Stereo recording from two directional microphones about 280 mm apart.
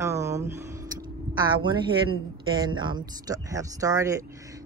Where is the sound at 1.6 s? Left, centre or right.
Centre.